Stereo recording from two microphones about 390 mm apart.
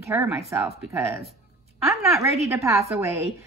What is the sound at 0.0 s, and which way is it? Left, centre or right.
A woman's voice, centre.